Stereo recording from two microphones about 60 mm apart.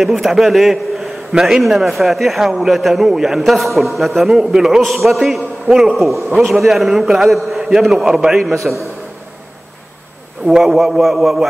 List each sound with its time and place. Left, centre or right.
0.0 s a man's voice: centre
10.4 s a man's voice: centre